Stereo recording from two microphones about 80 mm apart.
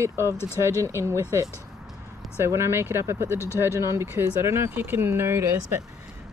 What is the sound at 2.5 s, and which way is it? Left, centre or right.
Speech, right.